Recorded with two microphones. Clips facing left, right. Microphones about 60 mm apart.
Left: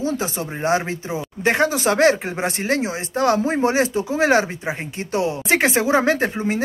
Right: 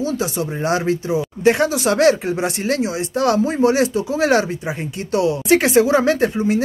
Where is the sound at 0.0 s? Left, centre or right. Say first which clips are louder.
Right 2 dB; left.